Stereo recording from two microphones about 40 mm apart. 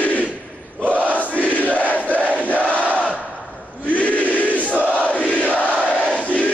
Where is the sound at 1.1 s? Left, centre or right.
Left.